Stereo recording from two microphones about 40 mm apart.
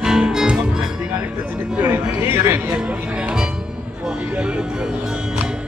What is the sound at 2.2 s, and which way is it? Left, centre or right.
Music, right.